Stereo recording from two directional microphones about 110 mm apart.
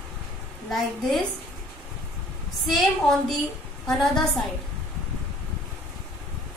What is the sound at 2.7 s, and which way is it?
A woman's voice, centre (ahead or behind).